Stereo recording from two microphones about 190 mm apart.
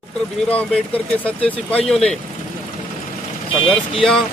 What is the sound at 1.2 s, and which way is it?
Speech, 5° left (ahead or behind).